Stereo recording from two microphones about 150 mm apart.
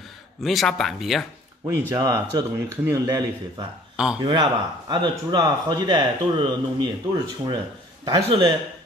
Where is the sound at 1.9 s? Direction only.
25° right (ahead or behind).